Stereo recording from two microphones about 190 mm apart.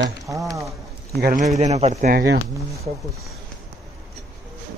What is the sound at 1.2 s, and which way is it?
Speech, 50° right (ahead or behind).